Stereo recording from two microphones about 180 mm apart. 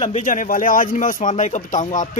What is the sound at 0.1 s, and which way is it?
Speech, 45° left (ahead or behind).